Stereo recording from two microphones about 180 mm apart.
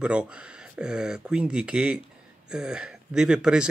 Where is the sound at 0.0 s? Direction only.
5° right (ahead or behind).